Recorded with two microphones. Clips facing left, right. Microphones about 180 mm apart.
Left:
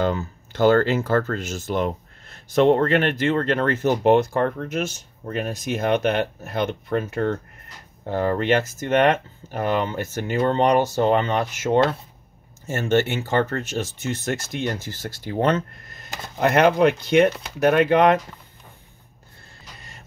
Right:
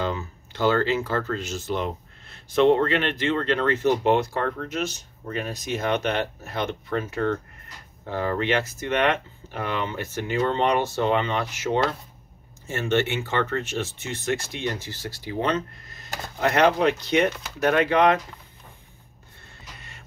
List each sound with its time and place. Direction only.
0.0 s speech: 45° left (ahead or behind)